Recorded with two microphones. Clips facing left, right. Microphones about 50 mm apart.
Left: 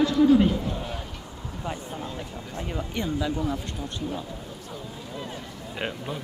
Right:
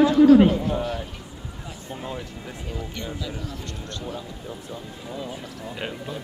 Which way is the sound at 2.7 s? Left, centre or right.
Left.